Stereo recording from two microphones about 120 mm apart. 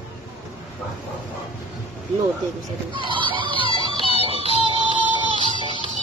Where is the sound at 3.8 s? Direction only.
55° left (ahead or behind).